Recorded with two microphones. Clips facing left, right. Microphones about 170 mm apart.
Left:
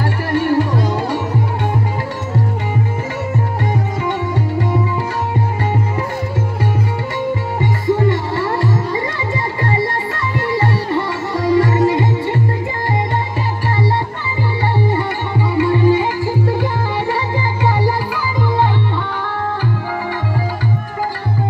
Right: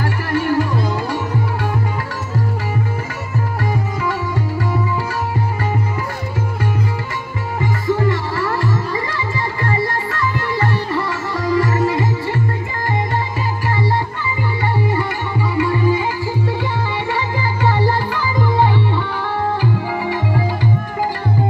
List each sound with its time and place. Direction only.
0.3 s music: 30° left (ahead or behind)
4.0 s sitar: 25° left (ahead or behind)
7.6 s music: 25° left (ahead or behind)
14.8 s music: 30° left (ahead or behind)
16.0 s music: 45° left (ahead or behind)
17.7 s music: 10° left (ahead or behind)
19.6 s music: 15° right (ahead or behind)